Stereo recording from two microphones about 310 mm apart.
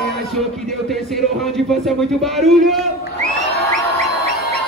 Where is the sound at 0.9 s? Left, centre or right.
Centre.